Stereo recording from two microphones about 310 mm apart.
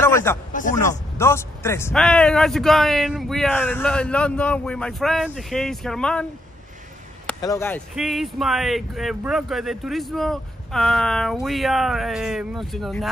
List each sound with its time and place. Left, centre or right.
0.0 s a sound: centre
0.5 s speech: left
0.7 s speech: centre
7.2 s speech: centre